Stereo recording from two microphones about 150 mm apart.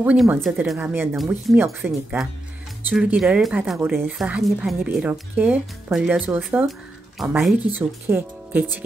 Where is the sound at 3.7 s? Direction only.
15° right (ahead or behind).